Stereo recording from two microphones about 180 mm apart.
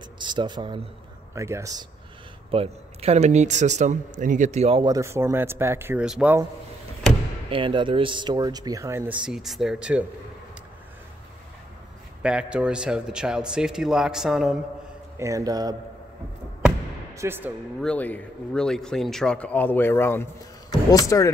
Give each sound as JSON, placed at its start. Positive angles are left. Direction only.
{"t": 0.2, "sound": "speech", "side_deg": -25}
{"t": 2.5, "sound": "speech", "side_deg": -35}
{"t": 4.8, "sound": "speech", "side_deg": -15}
{"t": 7.4, "sound": "speech", "side_deg": -30}
{"t": 12.2, "sound": "speech", "side_deg": -5}
{"t": 15.1, "sound": "speech", "side_deg": -15}
{"t": 17.1, "sound": "speech", "side_deg": -15}
{"t": 17.7, "sound": "speech", "side_deg": 5}